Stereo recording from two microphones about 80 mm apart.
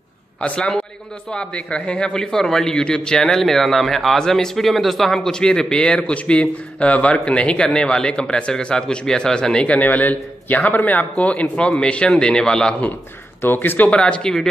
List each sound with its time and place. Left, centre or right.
0.4 s a man's voice: centre
13.4 s a man's voice: left; by 14.5 s centre